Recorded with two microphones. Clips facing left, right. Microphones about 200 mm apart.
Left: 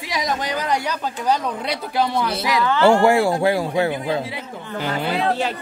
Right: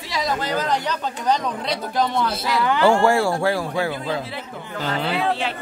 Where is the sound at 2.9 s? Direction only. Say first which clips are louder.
Left 2 dB; 15° left (ahead or behind).